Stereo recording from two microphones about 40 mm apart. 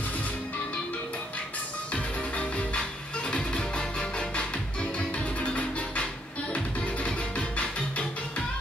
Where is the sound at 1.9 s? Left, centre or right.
Left.